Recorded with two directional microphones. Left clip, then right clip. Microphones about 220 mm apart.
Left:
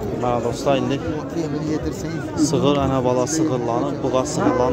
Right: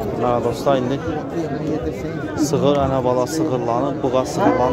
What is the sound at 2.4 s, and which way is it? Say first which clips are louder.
Speech: right 1 dB; 5° left (ahead or behind).